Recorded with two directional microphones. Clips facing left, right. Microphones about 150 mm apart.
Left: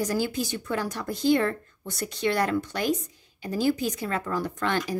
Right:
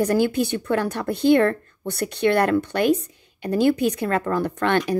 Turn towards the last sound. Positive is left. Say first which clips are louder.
# right 6 dB
turn(degrees=-65)  # may be behind; listen again after turning